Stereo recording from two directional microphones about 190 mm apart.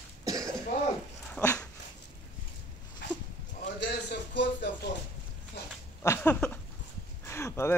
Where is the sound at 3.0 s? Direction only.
65° left (ahead or behind).